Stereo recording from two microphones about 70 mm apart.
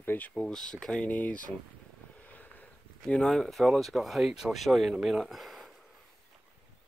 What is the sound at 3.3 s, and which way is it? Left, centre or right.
Speech, centre.